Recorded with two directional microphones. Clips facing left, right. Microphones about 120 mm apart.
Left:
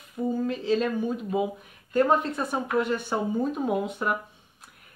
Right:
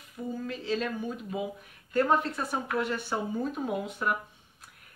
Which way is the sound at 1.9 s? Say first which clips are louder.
Left 3 dB; 20° left (ahead or behind).